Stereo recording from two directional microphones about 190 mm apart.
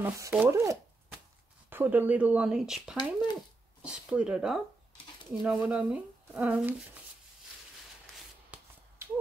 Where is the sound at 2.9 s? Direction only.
20° left (ahead or behind).